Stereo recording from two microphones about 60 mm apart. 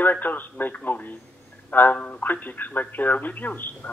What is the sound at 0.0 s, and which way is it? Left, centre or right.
A man's voice, left.